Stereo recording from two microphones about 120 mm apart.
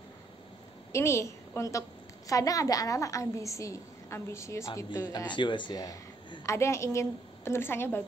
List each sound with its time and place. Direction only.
0.9 s a woman's voice: 25° left (ahead or behind)
5.3 s a woman's voice: 40° left (ahead or behind); by 8.0 s 20° left (ahead or behind)